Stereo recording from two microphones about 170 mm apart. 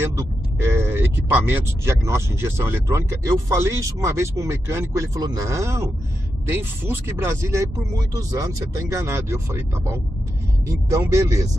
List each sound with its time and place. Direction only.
0.0 s speech: 20° right (ahead or behind)